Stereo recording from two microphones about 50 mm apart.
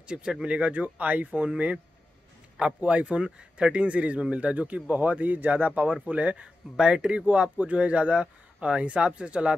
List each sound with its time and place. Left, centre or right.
0.0 s speech: centre